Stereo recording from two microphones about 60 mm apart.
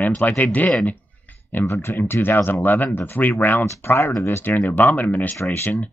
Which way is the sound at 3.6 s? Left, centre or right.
Left.